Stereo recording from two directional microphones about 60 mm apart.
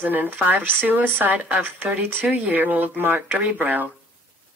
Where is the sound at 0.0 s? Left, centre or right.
Right.